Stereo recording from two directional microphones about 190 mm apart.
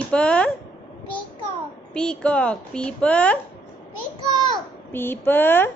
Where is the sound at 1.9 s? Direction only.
5° left (ahead or behind).